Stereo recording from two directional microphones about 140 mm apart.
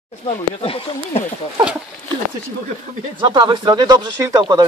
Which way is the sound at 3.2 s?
35° right (ahead or behind).